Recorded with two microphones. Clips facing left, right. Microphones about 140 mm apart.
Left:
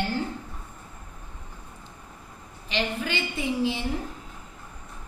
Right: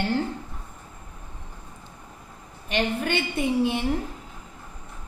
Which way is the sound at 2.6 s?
55° right (ahead or behind).